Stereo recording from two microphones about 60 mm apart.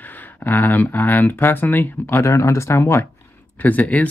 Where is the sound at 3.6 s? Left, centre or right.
Left.